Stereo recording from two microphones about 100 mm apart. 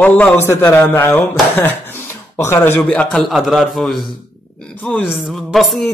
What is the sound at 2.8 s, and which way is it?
Speech, 10° left (ahead or behind).